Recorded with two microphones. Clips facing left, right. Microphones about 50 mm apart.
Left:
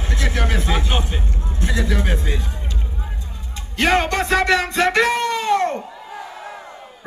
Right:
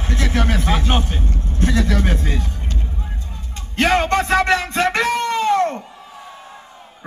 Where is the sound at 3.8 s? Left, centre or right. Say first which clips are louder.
Right 1 dB; left.